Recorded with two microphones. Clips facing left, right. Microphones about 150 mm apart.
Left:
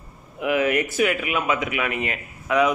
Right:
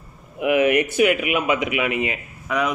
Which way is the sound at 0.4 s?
20° right (ahead or behind).